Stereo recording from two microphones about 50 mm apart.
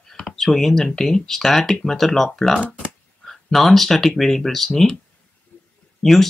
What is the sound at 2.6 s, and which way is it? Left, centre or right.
Speech, right.